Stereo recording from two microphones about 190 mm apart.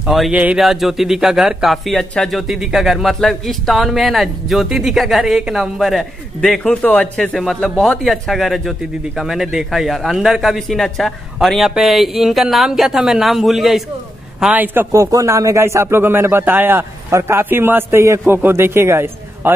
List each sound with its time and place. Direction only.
0.0 s a man's voice: centre (ahead or behind)